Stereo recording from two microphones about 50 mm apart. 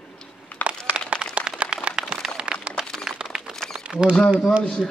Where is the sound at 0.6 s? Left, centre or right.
Left.